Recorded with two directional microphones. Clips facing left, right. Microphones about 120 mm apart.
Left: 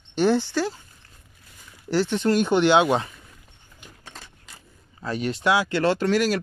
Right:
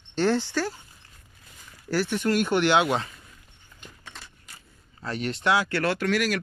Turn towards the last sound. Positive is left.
turn(degrees=30)  # may be behind; listen again after turning